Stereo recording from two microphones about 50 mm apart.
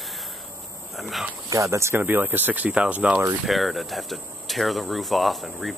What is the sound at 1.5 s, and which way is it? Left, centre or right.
Speech, right.